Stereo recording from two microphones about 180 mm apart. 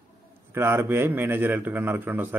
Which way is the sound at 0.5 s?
15° right (ahead or behind).